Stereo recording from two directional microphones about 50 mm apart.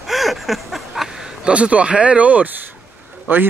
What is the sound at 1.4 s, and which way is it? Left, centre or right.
Speech, right.